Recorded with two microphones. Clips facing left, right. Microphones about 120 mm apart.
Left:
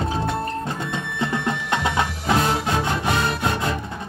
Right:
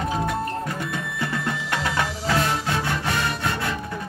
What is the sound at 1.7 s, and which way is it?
Music, 20° left (ahead or behind).